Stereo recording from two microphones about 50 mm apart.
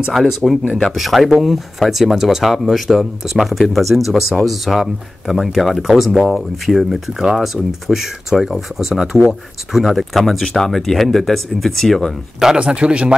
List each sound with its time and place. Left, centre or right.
0.1 s speech: centre
0.7 s speech: centre
0.9 s speech: centre
12.5 s a man's voice: right